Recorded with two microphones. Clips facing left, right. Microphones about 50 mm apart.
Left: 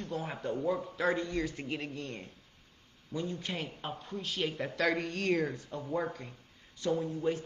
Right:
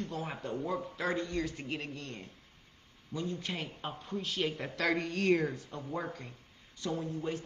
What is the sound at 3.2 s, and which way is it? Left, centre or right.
A man's voice, centre.